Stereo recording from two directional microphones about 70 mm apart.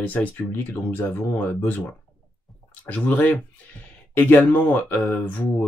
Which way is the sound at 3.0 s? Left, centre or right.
Left.